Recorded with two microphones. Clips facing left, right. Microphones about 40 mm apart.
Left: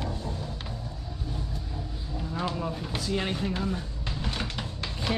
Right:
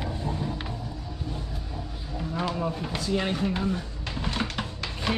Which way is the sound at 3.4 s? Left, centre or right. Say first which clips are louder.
Right 3 dB; centre.